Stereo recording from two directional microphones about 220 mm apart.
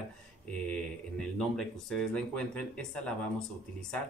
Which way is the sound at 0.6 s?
5° left (ahead or behind).